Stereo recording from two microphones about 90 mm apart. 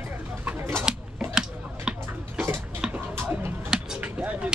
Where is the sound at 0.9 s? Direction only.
10° right (ahead or behind).